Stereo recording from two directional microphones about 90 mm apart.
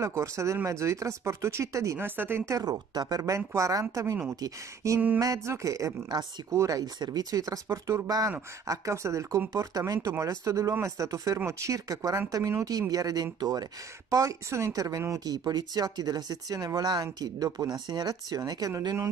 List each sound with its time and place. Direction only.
0.0 s speech: 35° right (ahead or behind)
2.0 s speech: 25° right (ahead or behind)
2.9 s speech: 45° right (ahead or behind)
14.1 s speech: 35° right (ahead or behind)